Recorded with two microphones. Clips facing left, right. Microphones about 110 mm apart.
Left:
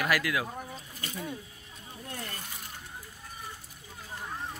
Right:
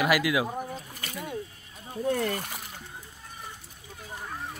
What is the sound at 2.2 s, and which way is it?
Speech, 90° right.